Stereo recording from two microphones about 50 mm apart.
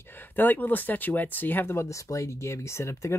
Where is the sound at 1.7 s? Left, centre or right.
Left.